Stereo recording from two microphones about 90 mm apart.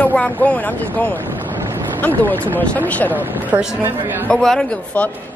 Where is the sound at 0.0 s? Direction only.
15° left (ahead or behind).